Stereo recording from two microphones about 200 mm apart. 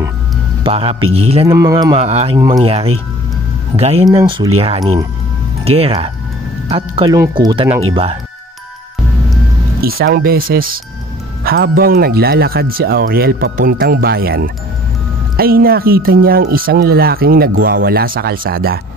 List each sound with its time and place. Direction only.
0.7 s speech: 30° right (ahead or behind)
1.5 s speech: 15° right (ahead or behind)
2.0 s speech: 30° right (ahead or behind)
5.7 s speech: 30° right (ahead or behind)
7.9 s speech: 30° right (ahead or behind)
9.8 s speech: 50° right (ahead or behind)